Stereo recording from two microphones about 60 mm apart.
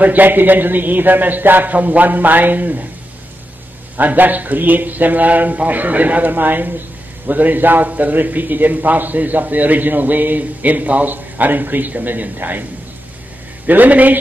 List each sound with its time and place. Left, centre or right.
0.0 s a man's voice: right
3.9 s a man's voice: right
13.7 s a man's voice: right